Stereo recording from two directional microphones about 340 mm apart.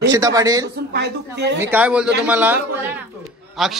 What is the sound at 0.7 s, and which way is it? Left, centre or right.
Speech, right.